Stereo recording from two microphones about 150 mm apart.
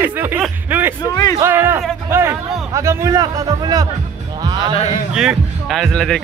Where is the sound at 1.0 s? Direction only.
25° left (ahead or behind).